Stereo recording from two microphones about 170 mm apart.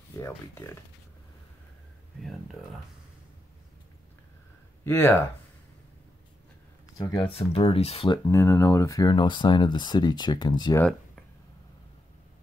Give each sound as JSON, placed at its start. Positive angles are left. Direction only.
{"t": 0.2, "sound": "speech", "side_deg": 15}
{"t": 4.8, "sound": "speech", "side_deg": 10}
{"t": 7.0, "sound": "speech", "side_deg": 20}
{"t": 7.3, "sound": "speech", "side_deg": 35}
{"t": 8.3, "sound": "speech", "side_deg": 15}
{"t": 10.8, "sound": "a sound", "side_deg": 5}